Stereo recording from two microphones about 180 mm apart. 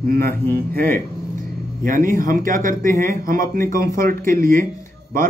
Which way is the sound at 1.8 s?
50° right (ahead or behind).